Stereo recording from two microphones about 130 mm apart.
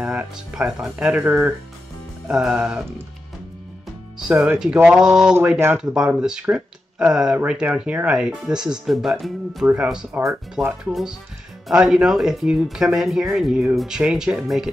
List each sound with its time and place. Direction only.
0.0 s speech: 10° right (ahead or behind)
4.2 s speech: 10° right (ahead or behind)
5.4 s speech: 15° right (ahead or behind)
5.8 s speech: 5° right (ahead or behind)